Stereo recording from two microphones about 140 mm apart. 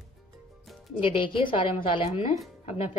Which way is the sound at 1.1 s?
35° left (ahead or behind).